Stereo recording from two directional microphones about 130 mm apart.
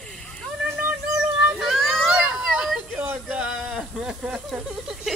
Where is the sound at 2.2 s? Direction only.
5° right (ahead or behind).